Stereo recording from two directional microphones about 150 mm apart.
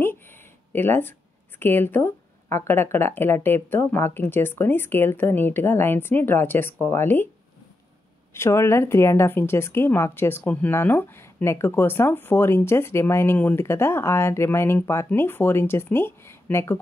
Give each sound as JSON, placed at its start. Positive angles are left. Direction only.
{"t": 0.7, "sound": "a woman's voice", "side_deg": 15}
{"t": 8.3, "sound": "a woman's voice", "side_deg": 15}